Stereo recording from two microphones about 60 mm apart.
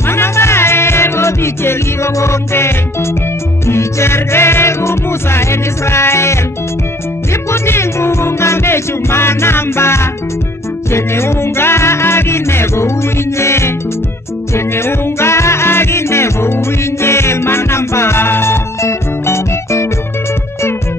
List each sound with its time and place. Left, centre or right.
0.0 s music: left
7.5 s music: left